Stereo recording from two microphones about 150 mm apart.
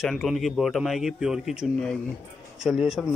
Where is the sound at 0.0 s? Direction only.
Centre (ahead or behind).